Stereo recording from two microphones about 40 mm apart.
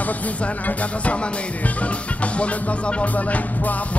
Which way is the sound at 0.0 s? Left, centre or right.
Left.